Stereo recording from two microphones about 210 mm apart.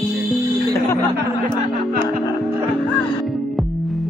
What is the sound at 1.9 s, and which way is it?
Music, 45° right (ahead or behind).